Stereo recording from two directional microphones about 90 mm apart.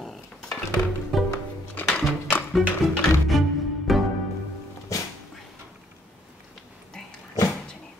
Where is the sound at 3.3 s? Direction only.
Centre (ahead or behind).